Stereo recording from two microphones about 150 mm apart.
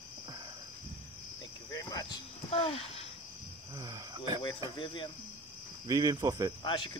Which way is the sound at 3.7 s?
25° right (ahead or behind).